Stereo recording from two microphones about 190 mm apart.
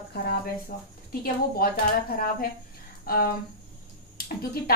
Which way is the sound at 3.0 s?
50° left (ahead or behind).